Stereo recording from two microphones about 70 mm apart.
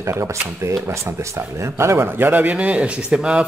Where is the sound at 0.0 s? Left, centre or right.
Right.